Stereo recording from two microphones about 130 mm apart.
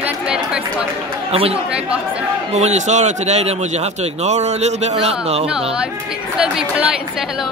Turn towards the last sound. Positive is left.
turn(degrees=-5)  # may be behind; listen again after turning